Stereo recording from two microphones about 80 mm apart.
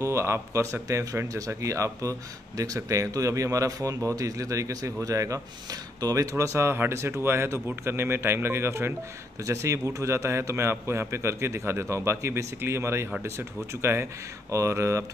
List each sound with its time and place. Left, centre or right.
0.0 s speech: right